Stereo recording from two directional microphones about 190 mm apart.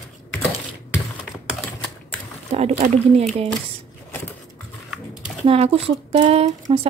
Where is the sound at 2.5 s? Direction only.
35° right (ahead or behind).